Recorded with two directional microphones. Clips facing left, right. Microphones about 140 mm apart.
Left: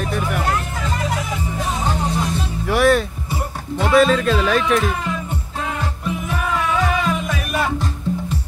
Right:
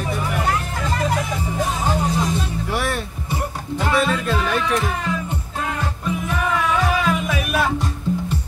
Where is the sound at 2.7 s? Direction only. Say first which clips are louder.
Left 12 dB; 90° left.